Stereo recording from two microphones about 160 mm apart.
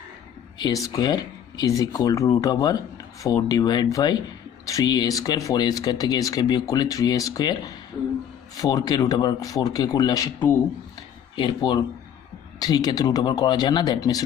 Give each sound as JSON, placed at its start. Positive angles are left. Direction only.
{"t": 0.6, "sound": "speech", "side_deg": 25}
{"t": 11.3, "sound": "speech", "side_deg": 30}